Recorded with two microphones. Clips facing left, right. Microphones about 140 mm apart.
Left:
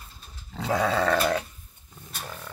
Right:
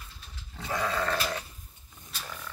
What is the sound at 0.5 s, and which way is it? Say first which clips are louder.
Goat: left 6 dB; 85° left.